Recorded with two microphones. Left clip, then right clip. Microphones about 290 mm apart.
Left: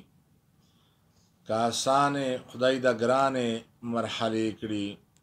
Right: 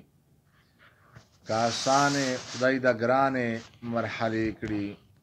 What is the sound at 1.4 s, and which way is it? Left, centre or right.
Speech, centre.